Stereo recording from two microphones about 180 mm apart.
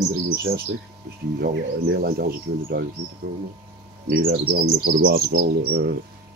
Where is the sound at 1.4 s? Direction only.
60° right (ahead or behind).